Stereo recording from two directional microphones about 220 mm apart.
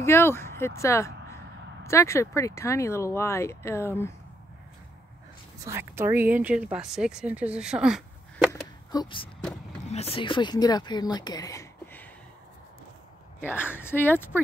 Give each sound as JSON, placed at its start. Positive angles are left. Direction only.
{"t": 0.0, "sound": "speech", "side_deg": 10}
{"t": 5.6, "sound": "speech", "side_deg": -10}
{"t": 8.5, "sound": "a sound", "side_deg": 10}
{"t": 9.8, "sound": "speech", "side_deg": 30}
{"t": 13.4, "sound": "speech", "side_deg": 10}